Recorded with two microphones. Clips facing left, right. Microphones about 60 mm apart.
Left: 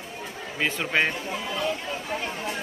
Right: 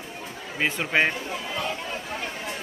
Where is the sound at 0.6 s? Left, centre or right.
Centre.